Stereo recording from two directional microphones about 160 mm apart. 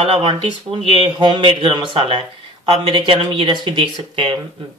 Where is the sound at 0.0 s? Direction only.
35° right (ahead or behind).